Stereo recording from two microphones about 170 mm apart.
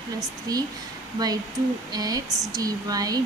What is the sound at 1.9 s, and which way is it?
Speech, 20° right (ahead or behind).